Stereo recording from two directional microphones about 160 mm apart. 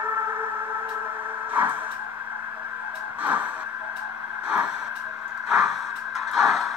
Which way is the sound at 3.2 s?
10° right (ahead or behind).